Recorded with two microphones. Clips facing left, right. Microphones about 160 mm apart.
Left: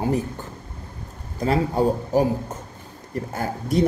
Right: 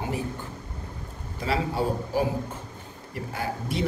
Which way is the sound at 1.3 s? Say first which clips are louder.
Left 6 dB; 45° left (ahead or behind).